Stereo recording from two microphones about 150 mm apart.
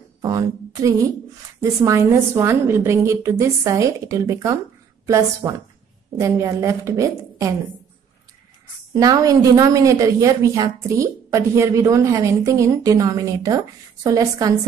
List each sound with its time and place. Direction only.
0.2 s a woman's voice: 25° right (ahead or behind)
8.9 s a woman's voice: 25° right (ahead or behind)